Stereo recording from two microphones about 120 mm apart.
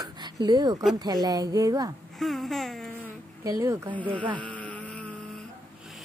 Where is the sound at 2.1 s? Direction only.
Centre (ahead or behind).